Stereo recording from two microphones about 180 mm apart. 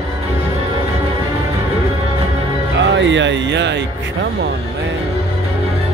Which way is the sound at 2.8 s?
85° right.